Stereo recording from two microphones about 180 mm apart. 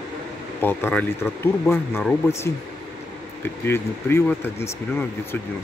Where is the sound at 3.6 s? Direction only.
15° left (ahead or behind).